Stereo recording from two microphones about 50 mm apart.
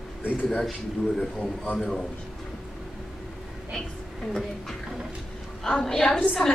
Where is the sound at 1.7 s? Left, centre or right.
Centre.